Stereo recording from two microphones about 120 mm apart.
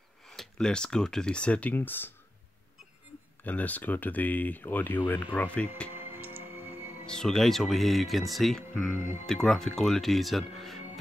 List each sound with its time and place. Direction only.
0.3 s speech: 5° left (ahead or behind)
3.4 s speech: 15° left (ahead or behind)
5.9 s music: 15° right (ahead or behind)
7.1 s speech: 5° left (ahead or behind)